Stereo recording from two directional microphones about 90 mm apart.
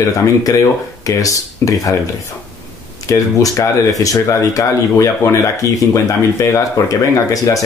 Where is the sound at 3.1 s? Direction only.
40° left (ahead or behind).